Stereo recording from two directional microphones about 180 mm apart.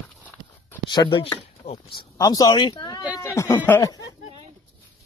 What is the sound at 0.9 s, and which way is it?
Speech, 25° left (ahead or behind).